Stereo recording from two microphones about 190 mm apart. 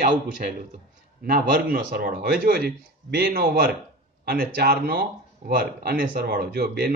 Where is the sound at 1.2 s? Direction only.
50° right (ahead or behind).